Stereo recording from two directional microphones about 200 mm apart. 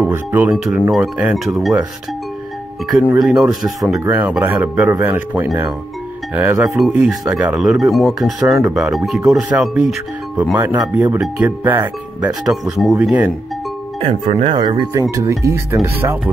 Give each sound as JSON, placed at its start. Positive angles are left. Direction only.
{"t": 0.0, "sound": "speech", "side_deg": -10}
{"t": 2.9, "sound": "speech", "side_deg": -5}
{"t": 6.8, "sound": "speech", "side_deg": -5}
{"t": 14.2, "sound": "speech", "side_deg": -30}